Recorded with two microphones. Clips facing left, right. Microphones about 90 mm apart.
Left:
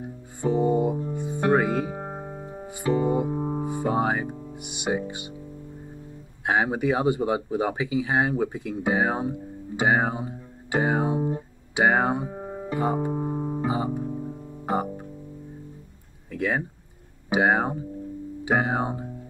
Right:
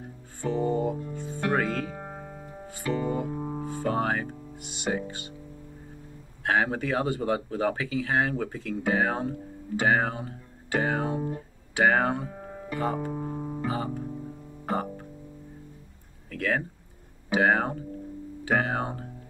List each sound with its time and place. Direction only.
0.0 s music: 15° left (ahead or behind)
6.4 s a sound: 15° left (ahead or behind)
16.3 s speech: 15° left (ahead or behind)